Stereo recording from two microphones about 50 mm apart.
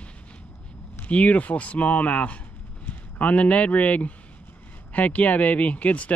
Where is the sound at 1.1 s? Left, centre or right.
Left.